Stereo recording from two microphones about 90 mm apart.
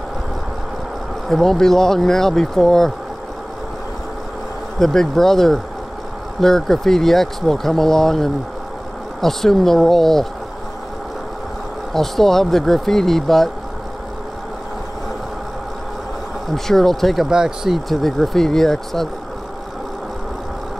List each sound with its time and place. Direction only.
1.3 s speech: 5° left (ahead or behind)
4.7 s speech: 5° left (ahead or behind)
11.9 s speech: 5° left (ahead or behind)
16.5 s speech: 5° left (ahead or behind)